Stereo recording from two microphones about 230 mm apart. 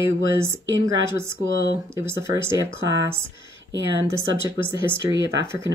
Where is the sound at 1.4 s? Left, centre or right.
Left.